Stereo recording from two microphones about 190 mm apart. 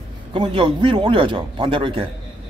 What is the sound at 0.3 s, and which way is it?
A man's voice, 25° right (ahead or behind).